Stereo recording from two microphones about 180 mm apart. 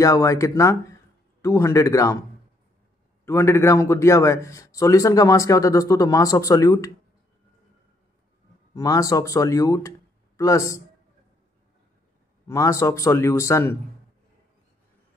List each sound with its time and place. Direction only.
0.0 s a man's voice: 15° left (ahead or behind)
3.3 s a man's voice: 15° left (ahead or behind)
8.7 s speech: 20° left (ahead or behind)
12.4 s a man's voice: 15° left (ahead or behind)